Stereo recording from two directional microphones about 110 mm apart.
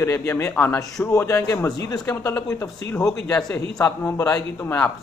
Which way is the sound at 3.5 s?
30° left (ahead or behind).